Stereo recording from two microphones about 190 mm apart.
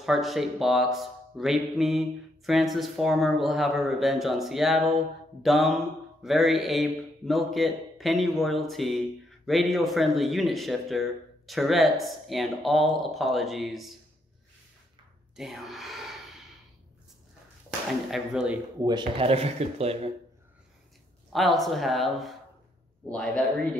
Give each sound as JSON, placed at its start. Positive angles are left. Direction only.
{"t": 0.0, "sound": "speech", "side_deg": 0}
{"t": 15.3, "sound": "speech", "side_deg": 0}
{"t": 18.1, "sound": "speech", "side_deg": -5}
{"t": 18.9, "sound": "speech", "side_deg": -25}
{"t": 21.3, "sound": "a man's voice", "side_deg": 0}